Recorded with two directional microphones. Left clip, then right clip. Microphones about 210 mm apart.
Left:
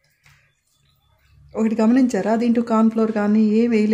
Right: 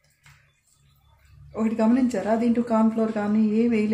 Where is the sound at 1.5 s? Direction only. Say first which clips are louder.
Left 4 dB; 55° left (ahead or behind).